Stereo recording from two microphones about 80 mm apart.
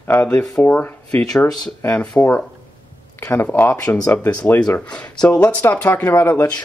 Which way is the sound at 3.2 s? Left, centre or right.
Left.